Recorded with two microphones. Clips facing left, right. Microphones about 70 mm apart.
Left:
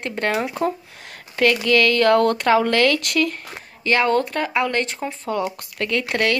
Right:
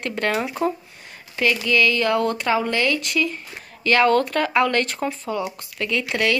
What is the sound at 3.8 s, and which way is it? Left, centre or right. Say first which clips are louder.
Speech: right 1 dB; left.